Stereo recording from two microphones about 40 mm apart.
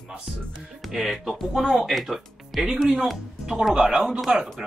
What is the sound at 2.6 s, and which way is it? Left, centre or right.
Speech, centre.